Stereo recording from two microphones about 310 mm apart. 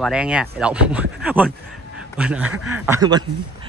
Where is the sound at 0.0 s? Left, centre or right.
Centre.